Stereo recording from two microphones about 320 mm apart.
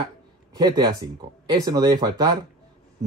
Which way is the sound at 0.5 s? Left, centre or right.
Centre.